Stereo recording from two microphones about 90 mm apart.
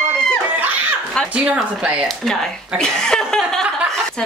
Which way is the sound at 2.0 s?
5° left (ahead or behind).